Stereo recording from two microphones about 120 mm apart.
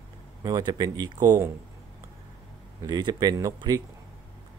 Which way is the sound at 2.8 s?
35° right (ahead or behind).